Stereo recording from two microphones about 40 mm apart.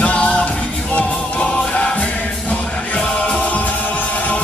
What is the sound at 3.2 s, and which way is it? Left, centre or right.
Music, left.